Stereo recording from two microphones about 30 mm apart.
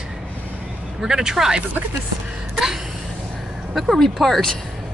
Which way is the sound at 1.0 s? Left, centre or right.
Right.